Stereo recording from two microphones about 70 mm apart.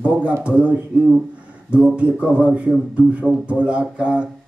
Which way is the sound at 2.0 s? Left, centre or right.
Centre.